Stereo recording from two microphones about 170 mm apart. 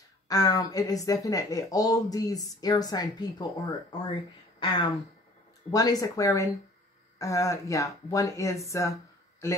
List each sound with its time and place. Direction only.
0.3 s speech: 20° left (ahead or behind)